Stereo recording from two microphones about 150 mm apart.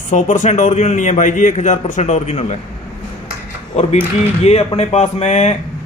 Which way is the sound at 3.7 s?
45° left (ahead or behind).